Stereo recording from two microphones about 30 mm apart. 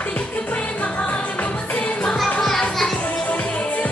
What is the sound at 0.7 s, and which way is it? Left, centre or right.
Music, left.